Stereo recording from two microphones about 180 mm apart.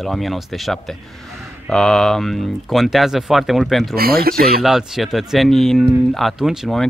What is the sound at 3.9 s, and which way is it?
Speech, 55° right (ahead or behind).